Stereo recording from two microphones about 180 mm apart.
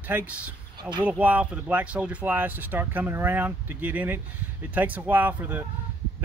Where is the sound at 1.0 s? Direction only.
10° right (ahead or behind).